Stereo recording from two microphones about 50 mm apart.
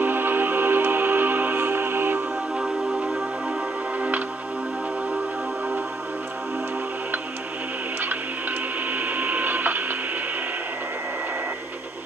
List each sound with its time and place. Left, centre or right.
0.0 s music: right
2.6 s music: centre
8.0 s printer: right